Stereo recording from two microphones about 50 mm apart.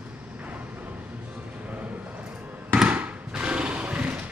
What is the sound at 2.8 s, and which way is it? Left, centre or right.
Fireworks, right.